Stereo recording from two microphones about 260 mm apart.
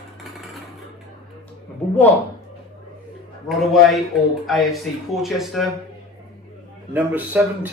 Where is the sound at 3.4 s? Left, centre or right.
Centre.